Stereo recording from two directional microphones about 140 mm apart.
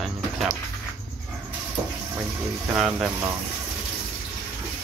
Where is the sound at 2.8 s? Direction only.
Centre (ahead or behind).